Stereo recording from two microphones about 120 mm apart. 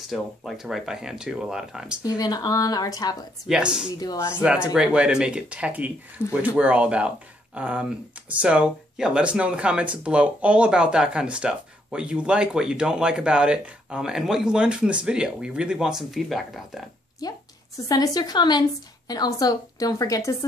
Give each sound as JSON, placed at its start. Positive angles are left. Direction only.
{"t": 0.1, "sound": "speech", "side_deg": 0}
{"t": 2.0, "sound": "a woman's voice", "side_deg": 30}
{"t": 3.4, "sound": "speech", "side_deg": -5}
{"t": 4.0, "sound": "a woman's voice", "side_deg": 30}
{"t": 4.4, "sound": "speech", "side_deg": -10}
{"t": 17.2, "sound": "a woman's voice", "side_deg": 35}